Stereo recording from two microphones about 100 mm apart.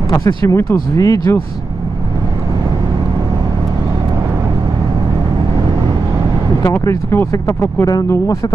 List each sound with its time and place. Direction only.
0.3 s speech: 45° left (ahead or behind)
6.6 s speech: 30° left (ahead or behind)
7.8 s speech: 35° left (ahead or behind)